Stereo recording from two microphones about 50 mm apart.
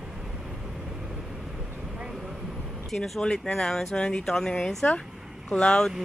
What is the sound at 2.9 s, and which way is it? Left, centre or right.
Speech, centre.